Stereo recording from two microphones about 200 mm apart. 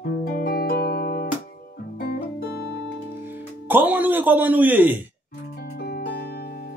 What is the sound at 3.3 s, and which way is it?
Speech, 10° right (ahead or behind).